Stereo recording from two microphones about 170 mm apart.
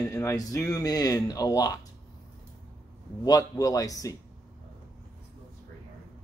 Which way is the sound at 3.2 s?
20° left (ahead or behind).